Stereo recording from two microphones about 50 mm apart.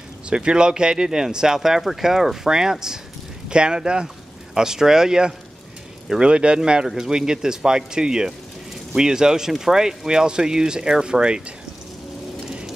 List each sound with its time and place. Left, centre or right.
0.3 s speech: centre